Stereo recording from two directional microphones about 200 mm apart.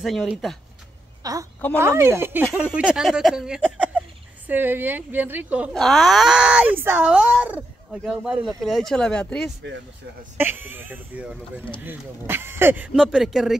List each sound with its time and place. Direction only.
0.0 s speech: centre (ahead or behind)
1.2 s speech: 15° right (ahead or behind); by 9.5 s 5° left (ahead or behind)
10.3 s speech: 10° right (ahead or behind)